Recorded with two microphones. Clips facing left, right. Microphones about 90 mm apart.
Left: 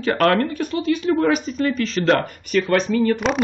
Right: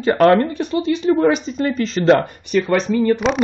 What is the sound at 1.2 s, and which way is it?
Speech, 25° right (ahead or behind).